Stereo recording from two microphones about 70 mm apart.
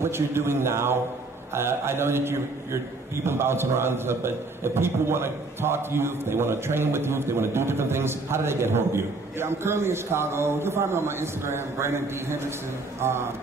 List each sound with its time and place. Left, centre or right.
0.0 s a man's voice: right